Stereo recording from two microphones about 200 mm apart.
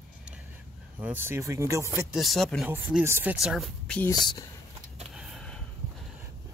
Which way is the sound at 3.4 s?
Centre (ahead or behind).